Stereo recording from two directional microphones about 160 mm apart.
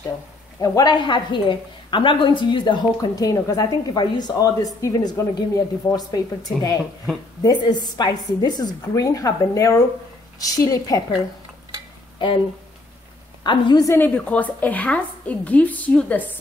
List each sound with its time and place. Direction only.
0.6 s a woman's voice: 25° left (ahead or behind)
13.4 s a woman's voice: 25° left (ahead or behind); by 16.3 s 10° left (ahead or behind)